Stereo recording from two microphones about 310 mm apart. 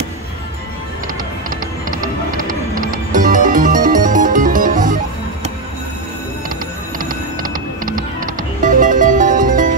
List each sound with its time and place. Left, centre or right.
2.9 s music: right
7.0 s music: right